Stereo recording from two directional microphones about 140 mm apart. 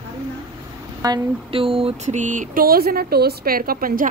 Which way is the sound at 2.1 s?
65° right (ahead or behind).